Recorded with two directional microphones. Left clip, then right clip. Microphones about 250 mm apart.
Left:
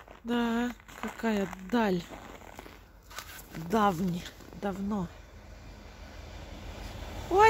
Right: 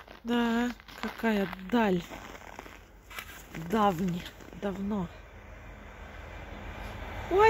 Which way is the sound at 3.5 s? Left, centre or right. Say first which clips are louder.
Even; centre.